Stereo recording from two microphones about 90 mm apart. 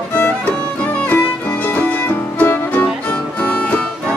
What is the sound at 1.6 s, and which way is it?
Music, 20° left (ahead or behind).